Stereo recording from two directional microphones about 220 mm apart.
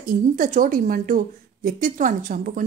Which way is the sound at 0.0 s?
40° right (ahead or behind).